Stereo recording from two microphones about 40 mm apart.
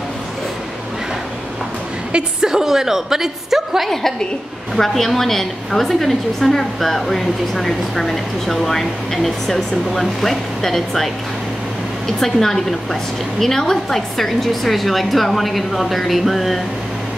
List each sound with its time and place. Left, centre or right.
2.4 s a woman's voice: centre
4.7 s a woman's voice: centre
12.1 s a woman's voice: centre